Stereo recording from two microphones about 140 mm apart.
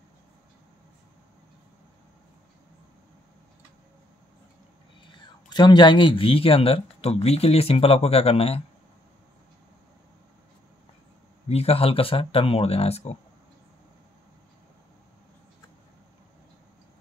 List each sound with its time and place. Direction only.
5.1 s speech: 30° left (ahead or behind)
11.4 s speech: 45° left (ahead or behind)